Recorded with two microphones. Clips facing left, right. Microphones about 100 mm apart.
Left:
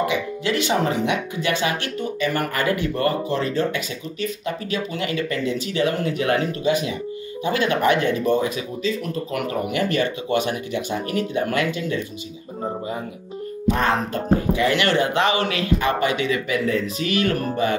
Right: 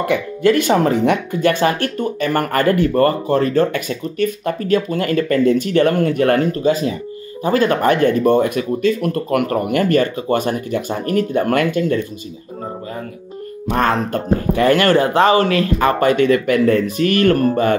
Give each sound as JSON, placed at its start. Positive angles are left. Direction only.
{"t": 0.0, "sound": "speech", "side_deg": -50}
{"t": 6.7, "sound": "speech", "side_deg": -35}
{"t": 13.7, "sound": "speech", "side_deg": -50}